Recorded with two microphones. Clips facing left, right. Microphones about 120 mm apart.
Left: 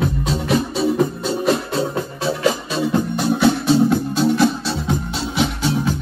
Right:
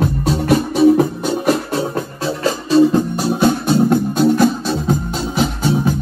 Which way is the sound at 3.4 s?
45° right (ahead or behind).